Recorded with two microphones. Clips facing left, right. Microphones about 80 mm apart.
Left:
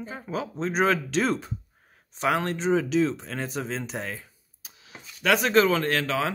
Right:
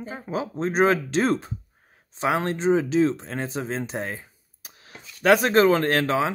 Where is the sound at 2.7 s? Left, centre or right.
Right.